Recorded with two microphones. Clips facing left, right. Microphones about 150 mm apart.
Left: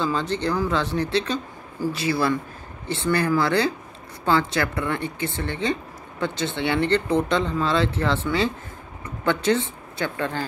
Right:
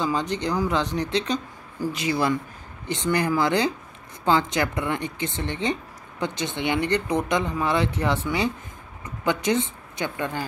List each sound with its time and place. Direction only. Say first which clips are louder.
0.0 s speech: left 1 dB; 15° right (ahead or behind)